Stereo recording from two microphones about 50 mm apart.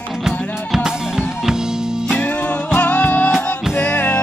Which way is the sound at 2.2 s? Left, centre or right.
Left.